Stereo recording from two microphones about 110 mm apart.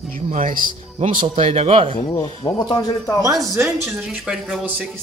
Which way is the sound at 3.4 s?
25° right (ahead or behind).